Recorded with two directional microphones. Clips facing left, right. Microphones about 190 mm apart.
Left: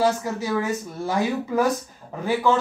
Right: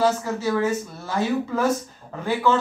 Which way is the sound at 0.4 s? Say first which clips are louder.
Right 2 dB; 15° left (ahead or behind).